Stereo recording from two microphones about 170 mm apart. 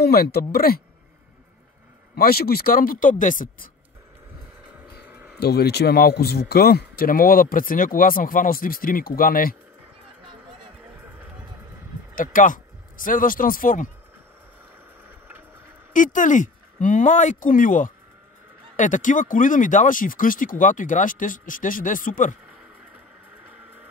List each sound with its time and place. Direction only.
0.0 s speech: 65° left (ahead or behind)
2.1 s speech: 65° left (ahead or behind)
5.4 s speech: 70° left (ahead or behind)
12.2 s speech: 50° left (ahead or behind)
15.0 s vehicle: 10° right (ahead or behind)
15.9 s speech: 50° left (ahead or behind)